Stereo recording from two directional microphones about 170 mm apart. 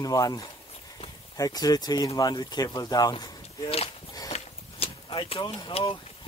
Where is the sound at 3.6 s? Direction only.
35° left (ahead or behind).